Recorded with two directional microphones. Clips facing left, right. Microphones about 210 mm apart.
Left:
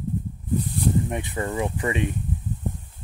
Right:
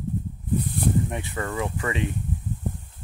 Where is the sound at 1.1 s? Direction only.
20° left (ahead or behind).